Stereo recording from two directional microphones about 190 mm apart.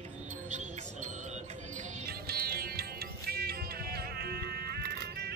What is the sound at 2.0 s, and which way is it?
Music, 55° right (ahead or behind).